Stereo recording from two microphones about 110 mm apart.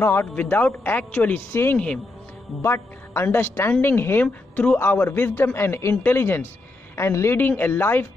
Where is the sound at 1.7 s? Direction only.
10° left (ahead or behind).